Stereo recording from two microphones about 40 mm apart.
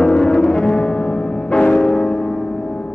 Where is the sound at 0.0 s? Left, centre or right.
Centre.